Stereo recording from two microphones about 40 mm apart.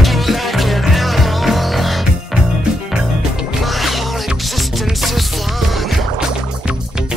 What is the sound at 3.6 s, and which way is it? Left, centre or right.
Music, centre.